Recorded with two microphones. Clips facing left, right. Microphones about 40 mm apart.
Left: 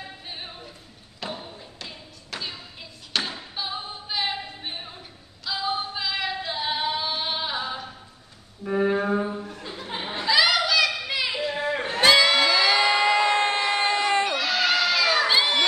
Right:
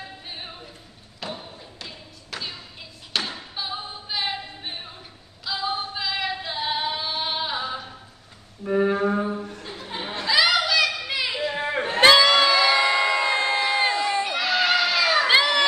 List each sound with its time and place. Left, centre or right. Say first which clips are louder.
0.3 s a sound: even; centre
1.2 s thump: even; centre
3.3 s music: even; centre
5.4 s singing: even; centre
8.6 s music: right 2 dB; centre
9.8 s a sound: left 1 dB; centre
11.1 s chatter: right 1 dB; centre; by 12.0 s right
12.2 s crowd: right 2 dB; centre
12.5 s music: right 1 dB; right
13.4 s crowd: right 1 dB; left
14.3 s a sound: right 2 dB; centre
15.2 s crowd: right 3 dB; right